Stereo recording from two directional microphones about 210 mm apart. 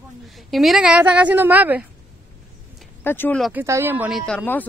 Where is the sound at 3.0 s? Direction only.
10° left (ahead or behind).